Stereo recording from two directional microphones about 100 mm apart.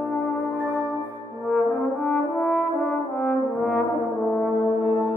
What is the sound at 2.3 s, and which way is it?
Brass instrument, 15° left (ahead or behind).